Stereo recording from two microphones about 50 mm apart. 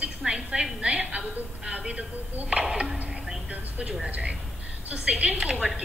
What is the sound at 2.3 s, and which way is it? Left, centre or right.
Speech, right.